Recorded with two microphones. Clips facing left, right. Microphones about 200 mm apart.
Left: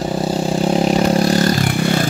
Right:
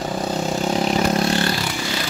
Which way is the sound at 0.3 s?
30° left (ahead or behind).